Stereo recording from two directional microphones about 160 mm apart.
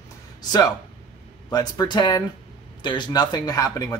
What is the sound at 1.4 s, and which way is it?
Speech, 25° left (ahead or behind).